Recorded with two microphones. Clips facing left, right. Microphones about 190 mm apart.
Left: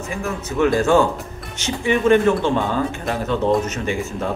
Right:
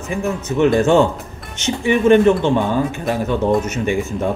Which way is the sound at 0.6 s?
20° right (ahead or behind).